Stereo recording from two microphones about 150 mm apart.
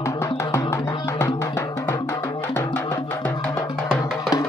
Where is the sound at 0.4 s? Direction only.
20° left (ahead or behind).